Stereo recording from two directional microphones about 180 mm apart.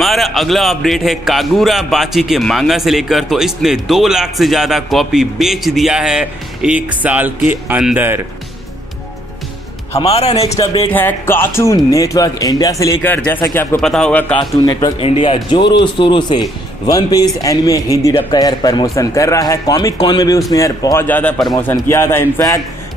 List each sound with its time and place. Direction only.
0.0 s a man's voice: centre (ahead or behind)
9.9 s speech: 35° left (ahead or behind)
10.9 s a man's voice: 10° left (ahead or behind)
14.6 s speech: 20° left (ahead or behind)